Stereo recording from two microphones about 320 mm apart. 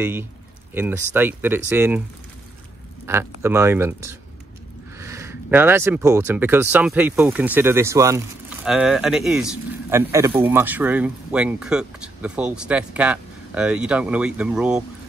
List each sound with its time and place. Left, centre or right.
0.0 s speech: centre
3.1 s speech: centre